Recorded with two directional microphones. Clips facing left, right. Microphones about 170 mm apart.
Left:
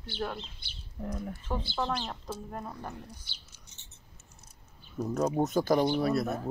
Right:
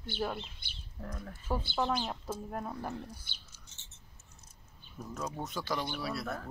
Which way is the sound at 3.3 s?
55° right (ahead or behind).